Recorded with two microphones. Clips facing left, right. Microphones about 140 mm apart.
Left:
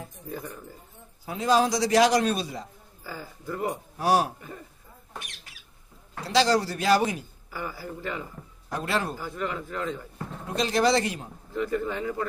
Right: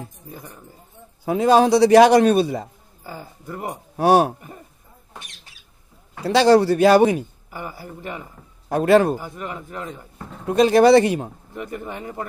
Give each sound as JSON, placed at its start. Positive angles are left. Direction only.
{"t": 1.2, "sound": "a man's voice", "side_deg": -65}
{"t": 3.0, "sound": "speech", "side_deg": -20}
{"t": 3.9, "sound": "a man's voice", "side_deg": -60}
{"t": 6.2, "sound": "a man's voice", "side_deg": -60}
{"t": 7.5, "sound": "speech", "side_deg": -20}
{"t": 8.6, "sound": "a man's voice", "side_deg": -60}
{"t": 9.2, "sound": "a man's voice", "side_deg": -20}
{"t": 10.5, "sound": "a man's voice", "side_deg": -60}
{"t": 11.5, "sound": "speech", "side_deg": -20}